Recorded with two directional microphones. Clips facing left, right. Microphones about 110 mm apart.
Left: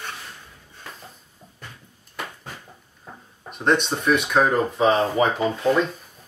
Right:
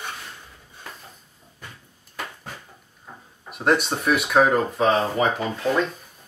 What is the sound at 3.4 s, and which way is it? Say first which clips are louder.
Speech: even; 5° right (ahead or behind).